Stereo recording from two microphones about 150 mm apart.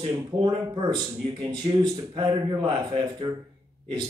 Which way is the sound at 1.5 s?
30° right (ahead or behind).